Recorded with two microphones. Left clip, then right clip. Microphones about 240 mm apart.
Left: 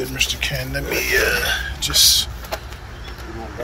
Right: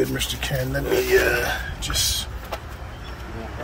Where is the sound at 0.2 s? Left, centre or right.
Right.